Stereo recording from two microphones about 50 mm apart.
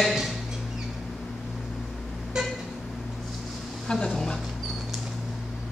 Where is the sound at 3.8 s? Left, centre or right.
Centre.